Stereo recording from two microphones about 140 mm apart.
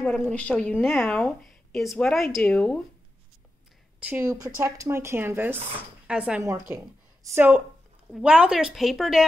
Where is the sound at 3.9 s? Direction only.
10° right (ahead or behind).